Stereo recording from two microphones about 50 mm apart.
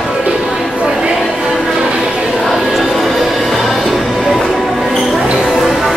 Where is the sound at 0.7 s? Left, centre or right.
Right.